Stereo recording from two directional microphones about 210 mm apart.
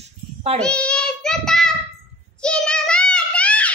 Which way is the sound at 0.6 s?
5° left (ahead or behind).